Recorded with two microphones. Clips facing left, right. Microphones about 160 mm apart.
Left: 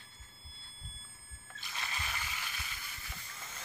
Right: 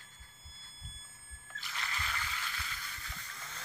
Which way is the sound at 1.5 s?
20° left (ahead or behind).